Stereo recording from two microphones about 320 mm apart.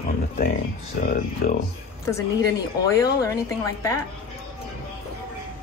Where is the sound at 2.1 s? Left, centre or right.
Centre.